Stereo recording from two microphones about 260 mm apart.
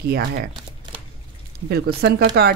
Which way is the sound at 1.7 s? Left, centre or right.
Right.